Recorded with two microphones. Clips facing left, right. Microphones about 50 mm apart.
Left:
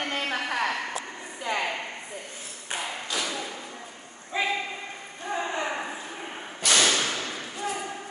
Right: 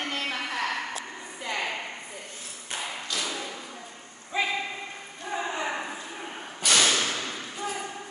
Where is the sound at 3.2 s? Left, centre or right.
Centre.